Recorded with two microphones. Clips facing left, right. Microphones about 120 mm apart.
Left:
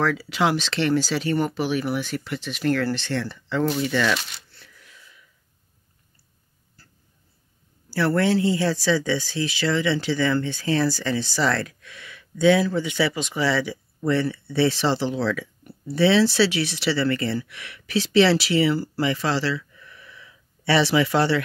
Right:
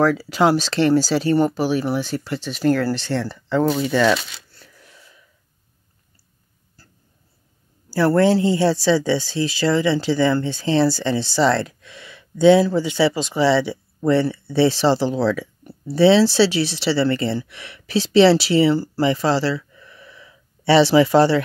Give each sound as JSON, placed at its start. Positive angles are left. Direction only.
{"t": 0.0, "sound": "speech", "side_deg": -40}
{"t": 7.9, "sound": "speech", "side_deg": -35}